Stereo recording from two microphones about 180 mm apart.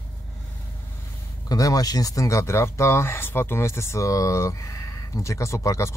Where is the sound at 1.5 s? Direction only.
20° left (ahead or behind).